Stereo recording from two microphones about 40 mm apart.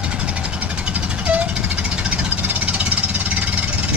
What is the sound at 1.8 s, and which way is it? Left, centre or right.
Vehicle, right.